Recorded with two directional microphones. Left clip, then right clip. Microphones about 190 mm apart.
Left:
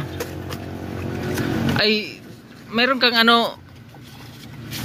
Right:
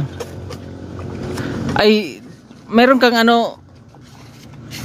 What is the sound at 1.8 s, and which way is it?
Speech, 50° right (ahead or behind).